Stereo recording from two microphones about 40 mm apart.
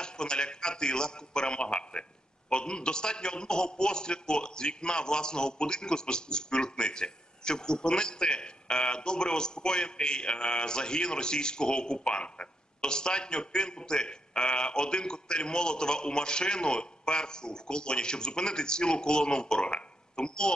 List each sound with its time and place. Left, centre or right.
0.0 s a man's voice: left